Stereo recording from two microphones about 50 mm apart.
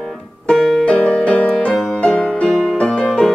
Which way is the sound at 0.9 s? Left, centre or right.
Left.